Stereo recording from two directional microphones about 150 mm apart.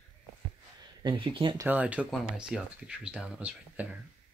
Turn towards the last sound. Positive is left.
turn(degrees=-10)  # may be behind; listen again after turning